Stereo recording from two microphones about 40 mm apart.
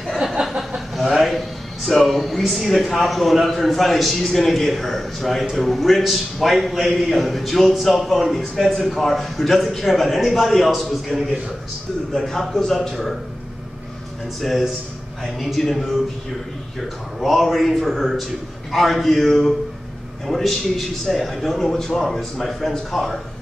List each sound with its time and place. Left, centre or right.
0.2 s a man's voice: centre
12.4 s speech: centre
15.3 s a man's voice: centre
17.2 s a man's voice: centre